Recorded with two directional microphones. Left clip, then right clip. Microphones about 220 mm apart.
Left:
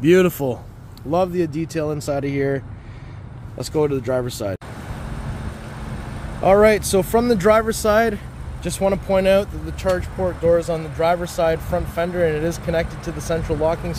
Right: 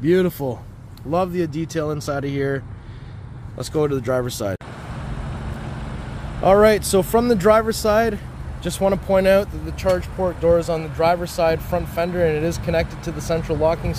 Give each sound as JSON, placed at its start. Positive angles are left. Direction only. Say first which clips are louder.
{"t": 0.0, "sound": "speech", "louder": "left 3 dB", "side_deg": 20}
{"t": 1.1, "sound": "speech", "louder": "left 2 dB", "side_deg": 5}
{"t": 6.4, "sound": "speech", "louder": "even", "side_deg": 0}